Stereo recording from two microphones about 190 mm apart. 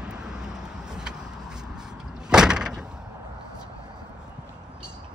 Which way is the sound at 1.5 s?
5° right (ahead or behind).